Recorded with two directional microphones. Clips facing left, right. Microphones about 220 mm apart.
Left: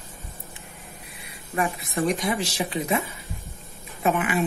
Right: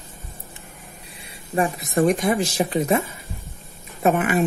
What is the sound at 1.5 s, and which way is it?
Speech, 40° right (ahead or behind).